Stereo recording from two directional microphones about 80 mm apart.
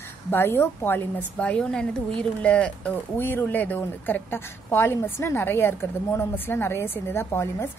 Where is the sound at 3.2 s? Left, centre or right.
Left.